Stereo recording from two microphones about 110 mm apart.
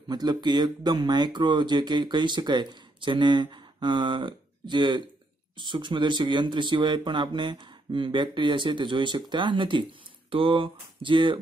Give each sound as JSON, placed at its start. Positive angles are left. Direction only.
{"t": 0.1, "sound": "speech", "side_deg": -40}